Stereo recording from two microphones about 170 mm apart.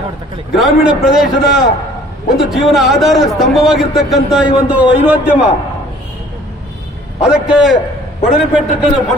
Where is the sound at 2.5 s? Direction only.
Centre (ahead or behind).